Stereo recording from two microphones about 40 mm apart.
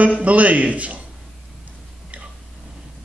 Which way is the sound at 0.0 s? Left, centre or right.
Right.